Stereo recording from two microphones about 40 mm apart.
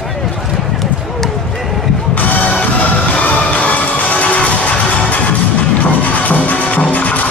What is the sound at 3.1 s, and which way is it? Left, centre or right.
Music, left.